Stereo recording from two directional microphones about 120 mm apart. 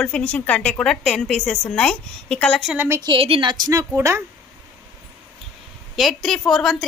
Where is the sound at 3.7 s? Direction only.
25° right (ahead or behind).